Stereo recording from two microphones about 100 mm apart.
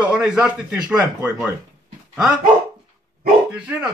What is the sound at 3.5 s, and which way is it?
Speech, 10° right (ahead or behind).